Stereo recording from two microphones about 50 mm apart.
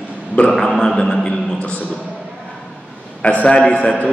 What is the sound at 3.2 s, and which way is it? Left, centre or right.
Speech, left.